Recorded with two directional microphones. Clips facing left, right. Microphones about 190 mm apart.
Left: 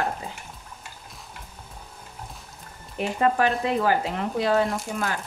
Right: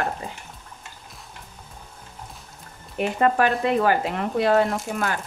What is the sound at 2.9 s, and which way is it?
Speech, 60° right (ahead or behind).